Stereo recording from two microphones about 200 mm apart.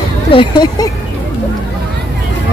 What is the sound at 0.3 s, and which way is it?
Speech, 25° left (ahead or behind).